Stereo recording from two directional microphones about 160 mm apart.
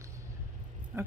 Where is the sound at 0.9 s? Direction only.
10° right (ahead or behind).